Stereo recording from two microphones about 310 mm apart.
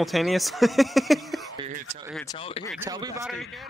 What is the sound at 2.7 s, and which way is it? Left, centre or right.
Speech, centre.